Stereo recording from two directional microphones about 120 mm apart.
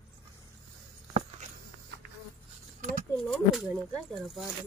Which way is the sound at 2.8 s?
90° right.